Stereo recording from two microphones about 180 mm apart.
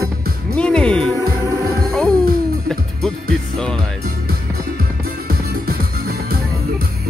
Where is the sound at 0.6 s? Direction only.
5° left (ahead or behind).